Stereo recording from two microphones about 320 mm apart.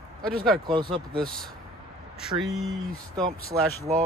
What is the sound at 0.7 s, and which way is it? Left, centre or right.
Speech, centre.